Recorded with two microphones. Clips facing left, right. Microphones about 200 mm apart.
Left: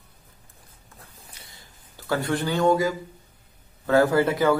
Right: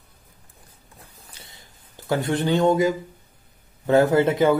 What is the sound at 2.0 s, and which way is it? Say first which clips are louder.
Speech: right 3 dB; 20° right (ahead or behind).